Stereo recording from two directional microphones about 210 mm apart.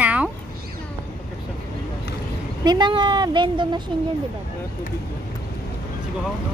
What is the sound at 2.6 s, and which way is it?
Speech, 20° right (ahead or behind).